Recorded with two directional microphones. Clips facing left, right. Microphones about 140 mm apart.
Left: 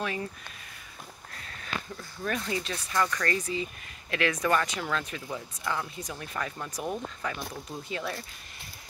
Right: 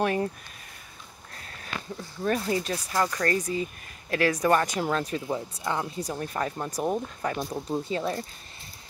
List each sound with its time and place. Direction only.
0.0 s speech: 50° right (ahead or behind)
2.0 s speech: 30° right (ahead or behind)